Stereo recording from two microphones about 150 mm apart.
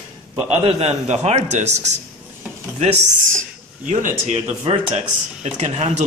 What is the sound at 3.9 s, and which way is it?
A man's voice, 55° right (ahead or behind).